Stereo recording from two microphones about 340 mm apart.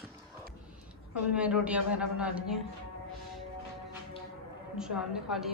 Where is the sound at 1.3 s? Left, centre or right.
Centre.